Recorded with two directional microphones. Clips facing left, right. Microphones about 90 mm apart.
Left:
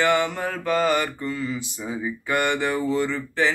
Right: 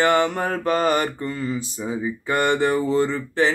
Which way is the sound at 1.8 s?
20° right (ahead or behind).